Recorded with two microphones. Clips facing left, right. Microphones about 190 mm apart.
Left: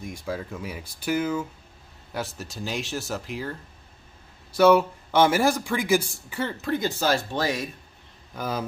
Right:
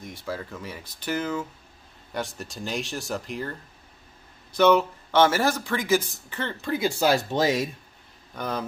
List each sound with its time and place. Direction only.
0.0 s speech: 15° left (ahead or behind)
4.6 s speech: 10° left (ahead or behind)
7.0 s speech: 15° right (ahead or behind)
8.4 s speech: 5° left (ahead or behind)